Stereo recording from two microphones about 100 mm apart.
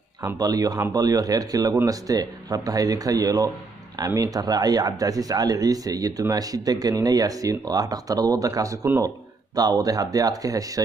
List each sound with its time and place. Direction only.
0.4 s speech: 40° right (ahead or behind)